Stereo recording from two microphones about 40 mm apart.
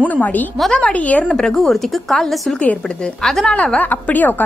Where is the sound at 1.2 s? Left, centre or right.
Centre.